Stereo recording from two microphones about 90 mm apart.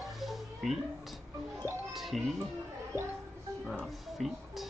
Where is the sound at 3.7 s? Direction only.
Centre (ahead or behind).